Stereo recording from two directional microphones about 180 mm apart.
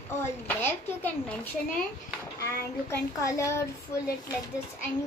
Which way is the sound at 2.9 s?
15° left (ahead or behind).